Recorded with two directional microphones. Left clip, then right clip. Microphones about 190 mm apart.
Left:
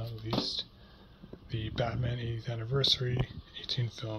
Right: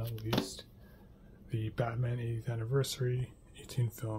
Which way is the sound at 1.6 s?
20° right (ahead or behind).